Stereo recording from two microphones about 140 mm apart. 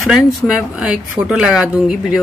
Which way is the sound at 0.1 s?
5° right (ahead or behind).